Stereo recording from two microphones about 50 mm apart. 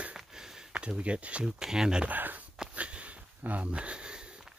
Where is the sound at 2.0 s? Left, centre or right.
Right.